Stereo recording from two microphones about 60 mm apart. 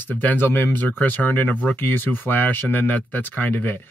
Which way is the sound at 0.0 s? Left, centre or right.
Left.